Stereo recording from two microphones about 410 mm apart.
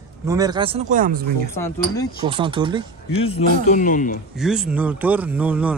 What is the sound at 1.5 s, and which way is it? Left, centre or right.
Speech, centre.